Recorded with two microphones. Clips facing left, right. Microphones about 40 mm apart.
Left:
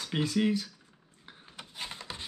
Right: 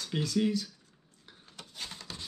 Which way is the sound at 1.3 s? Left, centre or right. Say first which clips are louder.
Left 3 dB; left.